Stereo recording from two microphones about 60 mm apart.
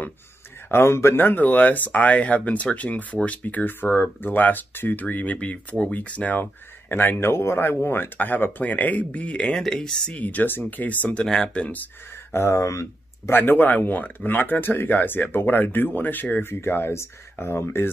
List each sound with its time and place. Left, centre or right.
0.7 s speech: left
6.9 s speech: left; by 10.1 s centre
10.1 s speech: left
11.2 s speech: centre
12.3 s speech: left
13.3 s speech: left